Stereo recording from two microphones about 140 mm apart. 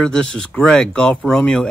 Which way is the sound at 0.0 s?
5° left (ahead or behind).